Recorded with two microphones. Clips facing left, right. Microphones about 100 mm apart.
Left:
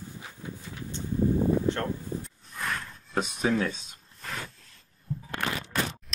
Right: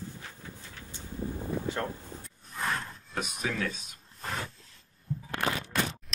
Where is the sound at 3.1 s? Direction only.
30° left (ahead or behind).